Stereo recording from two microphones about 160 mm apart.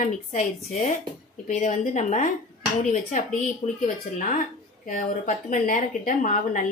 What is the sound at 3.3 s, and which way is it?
A woman's voice, 55° left (ahead or behind).